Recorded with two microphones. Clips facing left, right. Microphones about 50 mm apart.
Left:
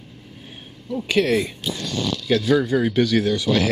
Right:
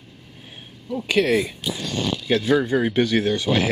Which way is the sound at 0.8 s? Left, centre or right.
Centre.